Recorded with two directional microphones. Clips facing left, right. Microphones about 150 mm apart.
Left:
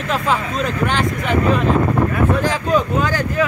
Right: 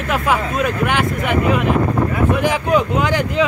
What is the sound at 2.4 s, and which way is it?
Speech, 15° right (ahead or behind).